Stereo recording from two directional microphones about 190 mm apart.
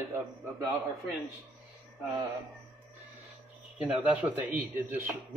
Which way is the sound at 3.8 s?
5° right (ahead or behind).